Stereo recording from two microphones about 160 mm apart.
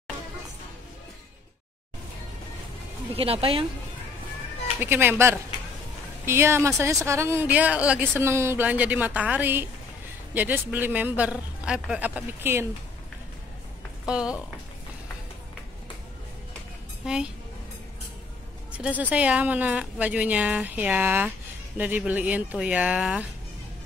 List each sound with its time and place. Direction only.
3.2 s speech: 35° right (ahead or behind)
4.7 s speech: 15° right (ahead or behind)
14.0 s speech: 5° right (ahead or behind)
17.0 s speech: 5° right (ahead or behind)
18.7 s speech: 10° right (ahead or behind)